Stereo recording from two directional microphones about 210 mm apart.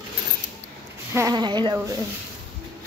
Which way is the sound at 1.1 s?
15° right (ahead or behind).